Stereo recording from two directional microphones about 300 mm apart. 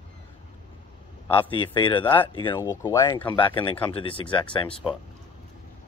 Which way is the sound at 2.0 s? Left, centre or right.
Centre.